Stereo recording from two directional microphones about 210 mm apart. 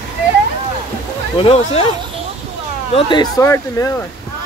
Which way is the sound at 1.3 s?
25° left (ahead or behind).